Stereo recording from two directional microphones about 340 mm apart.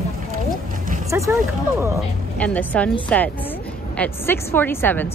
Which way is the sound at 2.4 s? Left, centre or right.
Centre.